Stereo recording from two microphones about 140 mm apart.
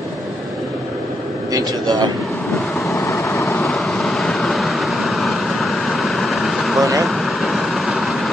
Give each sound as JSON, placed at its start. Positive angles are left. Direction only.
{"t": 1.5, "sound": "speech", "side_deg": -30}
{"t": 2.9, "sound": "vehicle", "side_deg": 20}
{"t": 3.6, "sound": "vehicle", "side_deg": 0}